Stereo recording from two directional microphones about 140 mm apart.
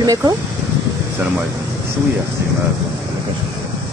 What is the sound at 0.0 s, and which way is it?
Speech, 25° right (ahead or behind).